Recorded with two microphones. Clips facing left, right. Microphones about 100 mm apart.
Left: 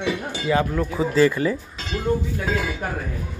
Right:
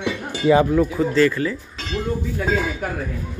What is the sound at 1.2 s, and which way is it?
Speech, 20° left (ahead or behind).